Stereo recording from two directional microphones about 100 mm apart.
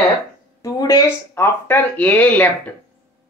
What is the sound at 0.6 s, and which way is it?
Speech, 35° left (ahead or behind).